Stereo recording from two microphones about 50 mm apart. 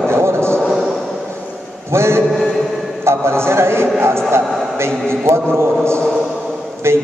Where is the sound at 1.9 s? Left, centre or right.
Right.